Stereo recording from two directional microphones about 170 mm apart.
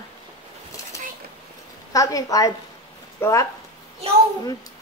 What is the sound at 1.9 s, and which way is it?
A woman's voice, 20° left (ahead or behind).